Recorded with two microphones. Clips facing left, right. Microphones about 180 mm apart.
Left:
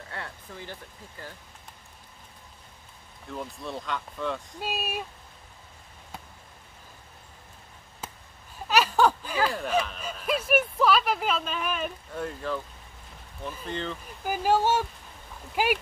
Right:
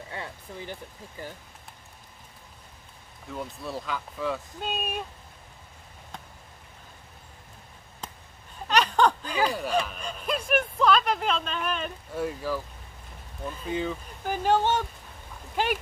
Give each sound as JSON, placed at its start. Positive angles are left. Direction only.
{"t": 0.1, "sound": "speech", "side_deg": -15}
{"t": 3.3, "sound": "speech", "side_deg": -5}
{"t": 8.0, "sound": "basketball bounce", "side_deg": 5}
{"t": 8.6, "sound": "a sound", "side_deg": 5}
{"t": 12.2, "sound": "speech", "side_deg": -5}
{"t": 13.7, "sound": "speech", "side_deg": -5}
{"t": 14.2, "sound": "speech", "side_deg": 5}